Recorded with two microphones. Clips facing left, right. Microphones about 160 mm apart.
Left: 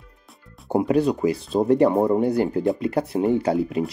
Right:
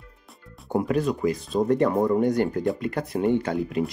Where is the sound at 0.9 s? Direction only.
30° left (ahead or behind).